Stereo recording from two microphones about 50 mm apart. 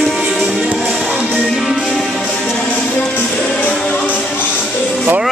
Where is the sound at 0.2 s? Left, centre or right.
Centre.